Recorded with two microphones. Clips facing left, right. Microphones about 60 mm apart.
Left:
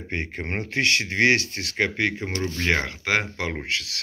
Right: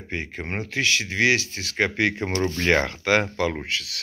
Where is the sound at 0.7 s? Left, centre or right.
Left.